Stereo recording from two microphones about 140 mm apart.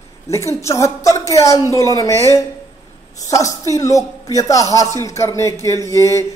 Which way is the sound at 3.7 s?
25° left (ahead or behind).